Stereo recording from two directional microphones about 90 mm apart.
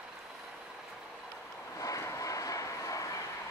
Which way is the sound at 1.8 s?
35° left (ahead or behind).